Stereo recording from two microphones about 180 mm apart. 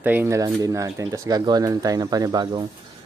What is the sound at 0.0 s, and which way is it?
Speech, 10° right (ahead or behind).